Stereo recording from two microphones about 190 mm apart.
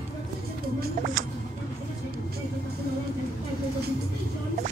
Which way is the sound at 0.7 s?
55° right (ahead or behind).